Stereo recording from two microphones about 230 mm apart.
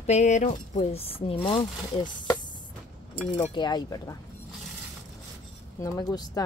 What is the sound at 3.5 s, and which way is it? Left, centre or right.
Speech, centre.